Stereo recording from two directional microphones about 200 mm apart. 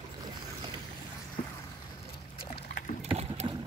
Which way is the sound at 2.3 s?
25° left (ahead or behind).